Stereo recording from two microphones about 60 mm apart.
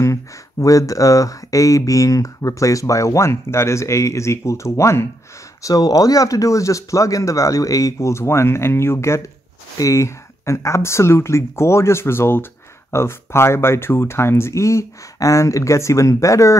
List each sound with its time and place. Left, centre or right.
0.0 s speech: left
5.6 s speech: left